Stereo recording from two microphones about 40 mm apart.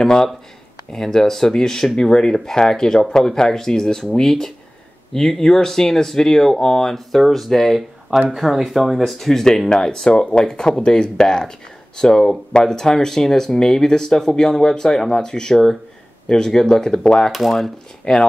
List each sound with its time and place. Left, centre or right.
0.0 s speech: centre
8.3 s speech: centre
9.3 s speech: centre
15.5 s speech: centre
16.3 s speech: centre
17.3 s speech: centre
18.1 s speech: centre